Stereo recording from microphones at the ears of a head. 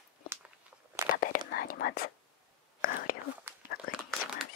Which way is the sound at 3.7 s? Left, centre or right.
Left.